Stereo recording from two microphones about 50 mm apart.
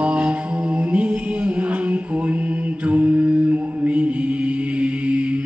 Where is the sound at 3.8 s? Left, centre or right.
Right.